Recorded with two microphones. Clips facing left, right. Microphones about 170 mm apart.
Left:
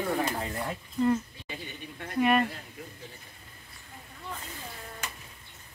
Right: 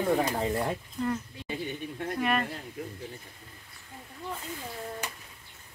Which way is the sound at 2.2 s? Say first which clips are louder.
Left 5 dB; 5° left (ahead or behind).